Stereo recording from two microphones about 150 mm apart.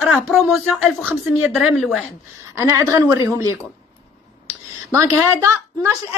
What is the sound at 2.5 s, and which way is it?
A woman's voice, 25° right (ahead or behind).